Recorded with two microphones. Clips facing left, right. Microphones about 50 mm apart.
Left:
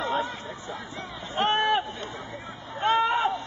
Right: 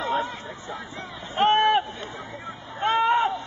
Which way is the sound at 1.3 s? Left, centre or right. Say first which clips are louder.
Right 4 dB; right.